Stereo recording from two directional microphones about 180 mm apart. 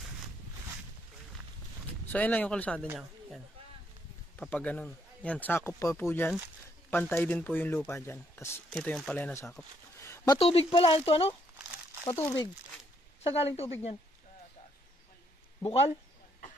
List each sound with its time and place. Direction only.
2.1 s speech: 10° left (ahead or behind)
4.4 s speech: 10° left (ahead or behind)
8.6 s speech: 5° left (ahead or behind); by 11.3 s 30° left (ahead or behind)
12.1 s speech: 15° left (ahead or behind)
13.2 s speech: 35° left (ahead or behind)